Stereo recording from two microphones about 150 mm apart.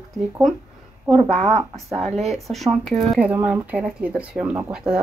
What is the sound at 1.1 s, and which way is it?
Speech, 40° right (ahead or behind).